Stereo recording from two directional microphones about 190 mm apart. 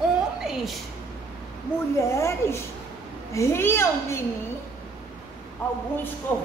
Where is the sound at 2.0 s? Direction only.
15° left (ahead or behind).